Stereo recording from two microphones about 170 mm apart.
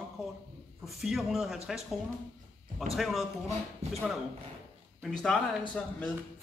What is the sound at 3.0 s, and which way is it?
A man's voice, centre (ahead or behind).